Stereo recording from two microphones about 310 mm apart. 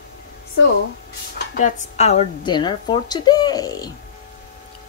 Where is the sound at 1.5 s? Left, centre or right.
Left.